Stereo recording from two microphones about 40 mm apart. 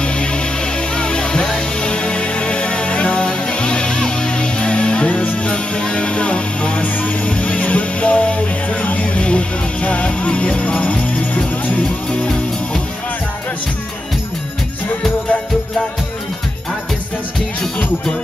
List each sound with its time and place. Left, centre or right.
0.0 s music: left
12.1 s music: centre
17.6 s music: left